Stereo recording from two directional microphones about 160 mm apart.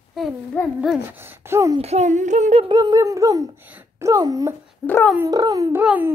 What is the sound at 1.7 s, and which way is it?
Speech, 40° right (ahead or behind).